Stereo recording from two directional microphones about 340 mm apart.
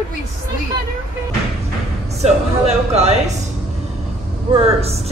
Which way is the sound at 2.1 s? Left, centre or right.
Centre.